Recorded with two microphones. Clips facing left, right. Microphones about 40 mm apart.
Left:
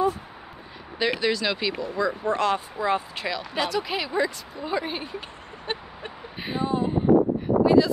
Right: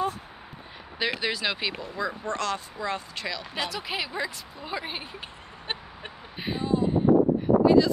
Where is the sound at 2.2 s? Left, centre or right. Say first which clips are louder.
Left 6 dB; centre.